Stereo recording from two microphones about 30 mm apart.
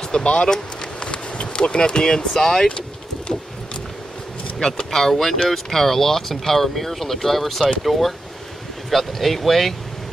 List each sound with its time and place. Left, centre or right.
0.2 s speech: left; by 2.7 s centre
4.6 s speech: left
4.9 s speech: centre